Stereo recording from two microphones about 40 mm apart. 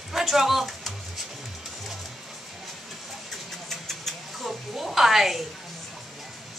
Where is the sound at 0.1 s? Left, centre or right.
Centre.